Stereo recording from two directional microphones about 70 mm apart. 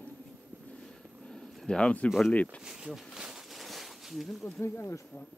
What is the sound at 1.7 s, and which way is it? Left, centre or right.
Speech, centre.